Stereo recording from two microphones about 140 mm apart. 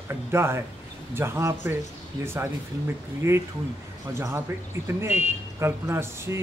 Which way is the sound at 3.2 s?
20° right (ahead or behind).